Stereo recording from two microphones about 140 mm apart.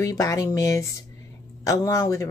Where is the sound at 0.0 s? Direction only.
25° left (ahead or behind).